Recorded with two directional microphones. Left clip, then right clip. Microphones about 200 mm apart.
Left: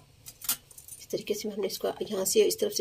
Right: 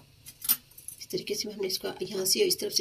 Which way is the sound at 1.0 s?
50° left (ahead or behind).